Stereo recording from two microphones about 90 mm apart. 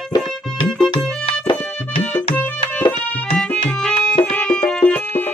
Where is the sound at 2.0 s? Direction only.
15° left (ahead or behind).